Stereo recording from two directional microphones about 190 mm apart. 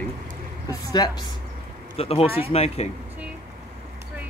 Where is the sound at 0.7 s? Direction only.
20° left (ahead or behind).